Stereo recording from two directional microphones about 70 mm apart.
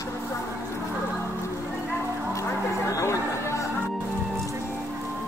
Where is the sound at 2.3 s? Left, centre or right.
Left.